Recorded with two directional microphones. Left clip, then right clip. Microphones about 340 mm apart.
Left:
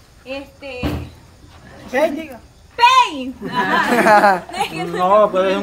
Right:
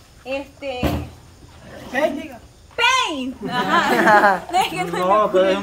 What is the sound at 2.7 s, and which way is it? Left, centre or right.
Speech, centre.